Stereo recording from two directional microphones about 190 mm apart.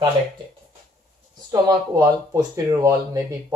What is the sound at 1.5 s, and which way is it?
Speech, 20° right (ahead or behind).